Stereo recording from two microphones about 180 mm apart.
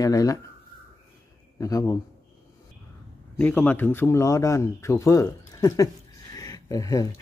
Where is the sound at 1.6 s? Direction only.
20° left (ahead or behind).